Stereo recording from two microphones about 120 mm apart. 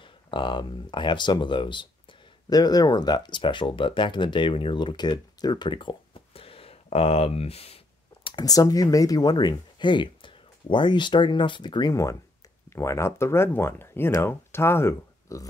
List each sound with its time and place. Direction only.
0.0 s speech: 40° left (ahead or behind)
8.5 s speech: 30° left (ahead or behind)
11.9 s speech: 25° left (ahead or behind)